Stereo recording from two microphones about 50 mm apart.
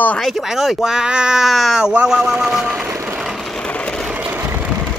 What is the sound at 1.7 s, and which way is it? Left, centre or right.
Speech, centre.